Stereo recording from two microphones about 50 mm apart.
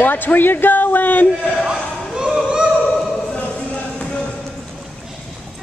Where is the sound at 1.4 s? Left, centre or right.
Centre.